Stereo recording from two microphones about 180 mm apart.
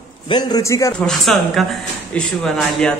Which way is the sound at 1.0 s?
Centre (ahead or behind).